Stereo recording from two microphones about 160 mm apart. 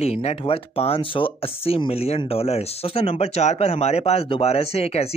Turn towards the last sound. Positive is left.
turn(degrees=40)  # may be behind; listen again after turning